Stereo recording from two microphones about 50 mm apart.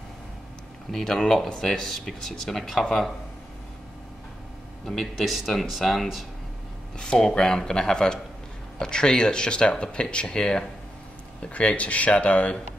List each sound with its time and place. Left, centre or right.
0.9 s speech: centre
4.8 s speech: centre
7.0 s speech: centre
11.4 s speech: left